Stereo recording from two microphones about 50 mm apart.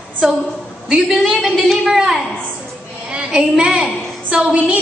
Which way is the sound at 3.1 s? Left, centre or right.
Centre.